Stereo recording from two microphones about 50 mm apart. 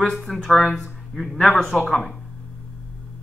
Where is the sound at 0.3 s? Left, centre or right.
Centre.